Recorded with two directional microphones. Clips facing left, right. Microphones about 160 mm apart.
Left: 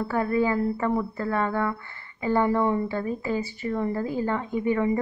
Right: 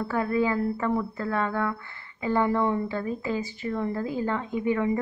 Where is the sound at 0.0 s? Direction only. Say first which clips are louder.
Left 1 dB; 5° left (ahead or behind).